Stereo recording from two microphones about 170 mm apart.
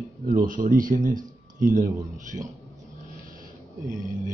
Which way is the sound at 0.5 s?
50° right (ahead or behind).